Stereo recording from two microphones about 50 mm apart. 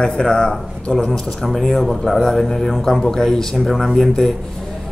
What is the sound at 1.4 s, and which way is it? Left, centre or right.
A man's voice, centre.